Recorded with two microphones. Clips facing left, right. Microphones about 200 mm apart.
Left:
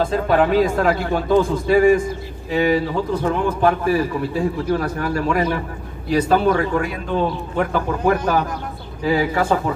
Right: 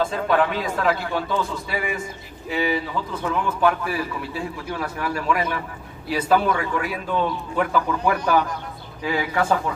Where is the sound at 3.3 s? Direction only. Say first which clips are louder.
Left 2 dB; 45° left (ahead or behind).